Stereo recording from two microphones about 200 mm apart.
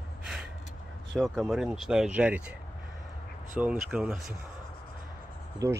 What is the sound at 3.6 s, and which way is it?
Speech, 5° right (ahead or behind).